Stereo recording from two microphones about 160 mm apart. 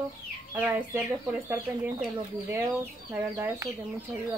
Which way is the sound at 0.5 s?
15° right (ahead or behind).